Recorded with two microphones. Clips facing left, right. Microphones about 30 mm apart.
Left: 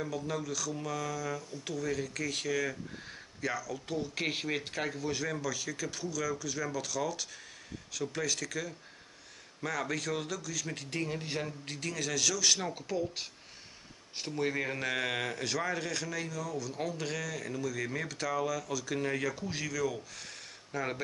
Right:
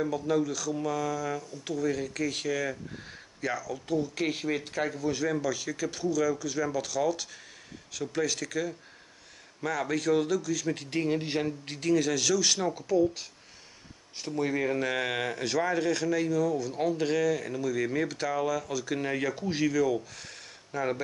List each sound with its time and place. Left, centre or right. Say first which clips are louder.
0.0 s speech: right 8 dB; centre
3.9 s speech: right 5 dB; centre
12.7 s speech: right 9 dB; centre
14.3 s speech: right 5 dB; centre